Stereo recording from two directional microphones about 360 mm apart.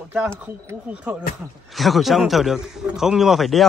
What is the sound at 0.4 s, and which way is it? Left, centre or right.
A man's voice, centre.